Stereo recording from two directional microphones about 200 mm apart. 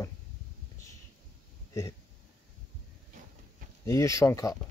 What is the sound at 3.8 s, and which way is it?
Speech, 15° left (ahead or behind).